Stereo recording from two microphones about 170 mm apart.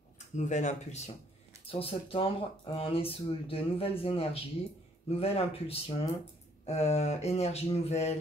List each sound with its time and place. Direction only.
0.4 s speech: 45° left (ahead or behind)